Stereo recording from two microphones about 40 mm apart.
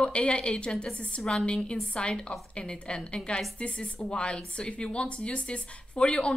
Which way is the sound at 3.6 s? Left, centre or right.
Left.